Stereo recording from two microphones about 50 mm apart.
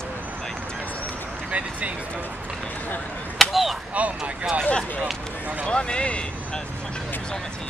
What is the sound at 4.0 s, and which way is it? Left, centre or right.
Speech, right.